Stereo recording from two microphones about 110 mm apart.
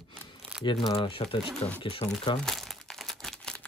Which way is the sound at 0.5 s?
10° right (ahead or behind).